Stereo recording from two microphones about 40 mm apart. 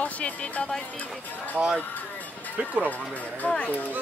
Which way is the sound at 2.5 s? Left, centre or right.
Right.